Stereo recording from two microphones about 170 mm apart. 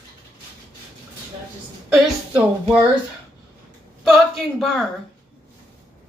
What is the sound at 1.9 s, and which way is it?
Speech, 5° right (ahead or behind).